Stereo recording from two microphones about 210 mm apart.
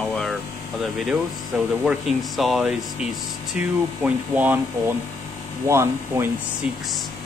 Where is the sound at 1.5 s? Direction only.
Centre (ahead or behind).